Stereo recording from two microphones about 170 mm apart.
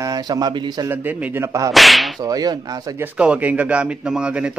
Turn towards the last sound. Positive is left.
turn(degrees=-5)  # may be behind; listen again after turning